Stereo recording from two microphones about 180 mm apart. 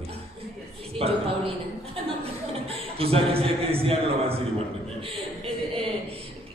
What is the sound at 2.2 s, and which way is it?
A man's voice, 35° right (ahead or behind).